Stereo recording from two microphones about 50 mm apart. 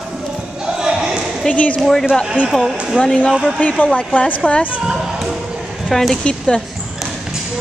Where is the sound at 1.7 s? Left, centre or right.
Centre.